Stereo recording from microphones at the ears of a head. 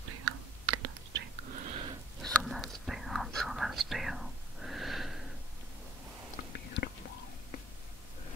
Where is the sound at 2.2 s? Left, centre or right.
Centre.